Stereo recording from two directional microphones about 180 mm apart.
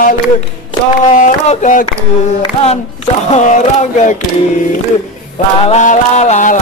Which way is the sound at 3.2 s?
40° left (ahead or behind).